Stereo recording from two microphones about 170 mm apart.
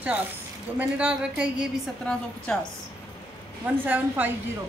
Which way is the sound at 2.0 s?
5° left (ahead or behind).